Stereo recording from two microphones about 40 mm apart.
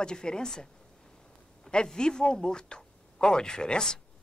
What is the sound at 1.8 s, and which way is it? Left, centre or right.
Speech, centre.